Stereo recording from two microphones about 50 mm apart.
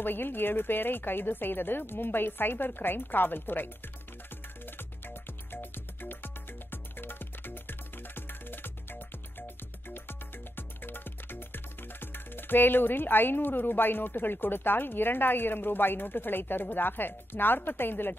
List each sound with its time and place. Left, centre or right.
0.0 s a woman's voice: left
4.6 s music: left